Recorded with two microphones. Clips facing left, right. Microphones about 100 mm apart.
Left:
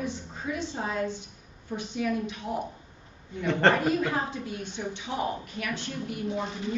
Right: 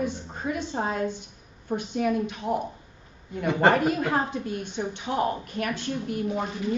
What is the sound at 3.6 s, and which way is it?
Speech, 10° right (ahead or behind).